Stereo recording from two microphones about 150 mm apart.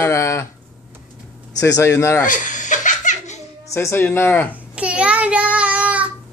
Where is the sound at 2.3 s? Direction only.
60° left (ahead or behind).